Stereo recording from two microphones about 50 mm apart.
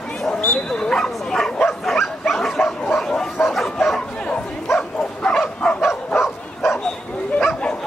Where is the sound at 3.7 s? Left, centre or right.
Centre.